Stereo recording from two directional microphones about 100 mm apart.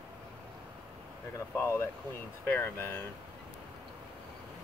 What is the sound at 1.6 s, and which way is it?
Speech, 20° left (ahead or behind).